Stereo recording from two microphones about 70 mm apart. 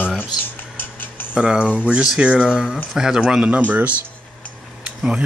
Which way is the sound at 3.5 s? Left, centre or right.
Right.